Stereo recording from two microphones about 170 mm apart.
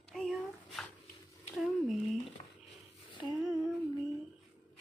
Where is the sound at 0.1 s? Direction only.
Centre (ahead or behind).